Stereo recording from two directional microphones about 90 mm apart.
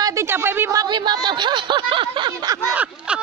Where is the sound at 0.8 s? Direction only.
55° right (ahead or behind).